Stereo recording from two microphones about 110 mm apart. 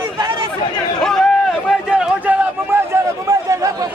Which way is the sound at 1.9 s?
10° right (ahead or behind).